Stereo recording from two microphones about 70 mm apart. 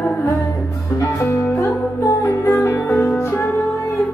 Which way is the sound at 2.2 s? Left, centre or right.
Left.